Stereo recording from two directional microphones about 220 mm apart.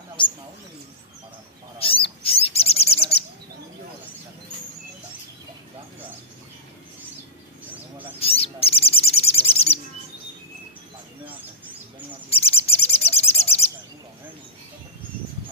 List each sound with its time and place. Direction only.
1.8 s bird: 25° left (ahead or behind)
8.2 s bird: 25° left (ahead or behind)
12.3 s bird: 25° left (ahead or behind)